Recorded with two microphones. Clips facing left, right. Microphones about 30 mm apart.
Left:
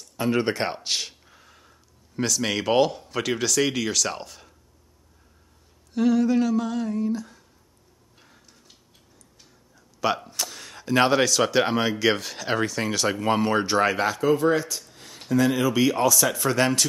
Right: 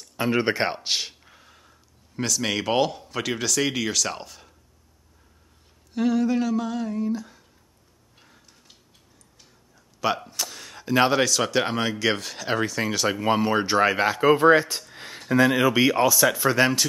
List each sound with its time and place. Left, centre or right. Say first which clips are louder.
0.0 s speech: right 1 dB; centre
5.9 s speech: left 2 dB; centre
8.2 s tick-tock: even; centre
9.9 s speech: even; centre
14.0 s speech: right 3 dB; right
14.3 s speech: right 7 dB; right; by 16.8 s centre